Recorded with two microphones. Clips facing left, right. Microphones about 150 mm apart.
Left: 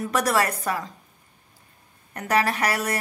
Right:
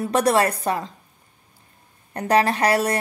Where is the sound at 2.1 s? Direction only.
30° right (ahead or behind).